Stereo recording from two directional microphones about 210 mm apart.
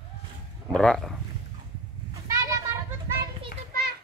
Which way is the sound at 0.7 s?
Centre (ahead or behind).